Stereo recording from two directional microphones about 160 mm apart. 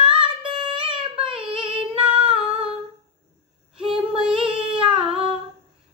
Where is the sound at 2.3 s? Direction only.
35° right (ahead or behind).